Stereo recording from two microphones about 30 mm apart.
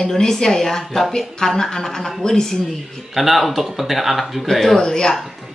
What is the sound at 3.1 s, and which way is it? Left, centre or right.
Speech, centre.